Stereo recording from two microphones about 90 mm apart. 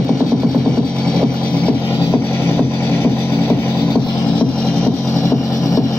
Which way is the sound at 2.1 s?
25° left (ahead or behind).